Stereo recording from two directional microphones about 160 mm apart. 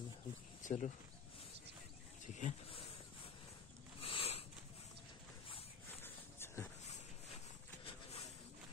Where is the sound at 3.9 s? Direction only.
35° left (ahead or behind).